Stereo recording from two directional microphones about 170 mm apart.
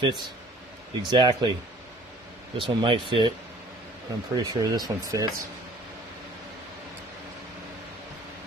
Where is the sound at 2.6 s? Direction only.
30° right (ahead or behind).